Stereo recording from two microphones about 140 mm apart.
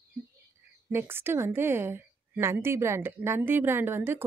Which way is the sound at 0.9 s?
15° right (ahead or behind).